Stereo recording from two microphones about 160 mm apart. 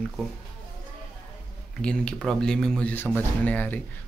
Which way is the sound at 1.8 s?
5° left (ahead or behind).